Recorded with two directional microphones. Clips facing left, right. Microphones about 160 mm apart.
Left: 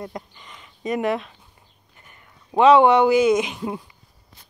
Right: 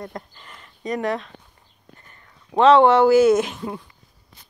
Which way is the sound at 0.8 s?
20° left (ahead or behind).